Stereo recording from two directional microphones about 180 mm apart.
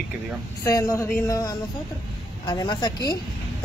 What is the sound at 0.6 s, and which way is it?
Speech, 20° left (ahead or behind).